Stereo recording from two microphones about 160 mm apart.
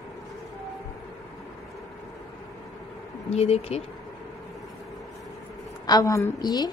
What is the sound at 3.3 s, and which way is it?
Speech, 40° left (ahead or behind).